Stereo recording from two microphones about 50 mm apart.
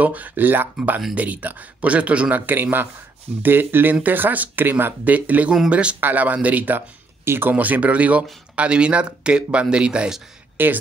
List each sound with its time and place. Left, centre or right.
0.0 s a man's voice: right
5.1 s a man's voice: right
5.9 s a man's voice: right
7.2 s speech: right
7.5 s speech: right
10.6 s speech: right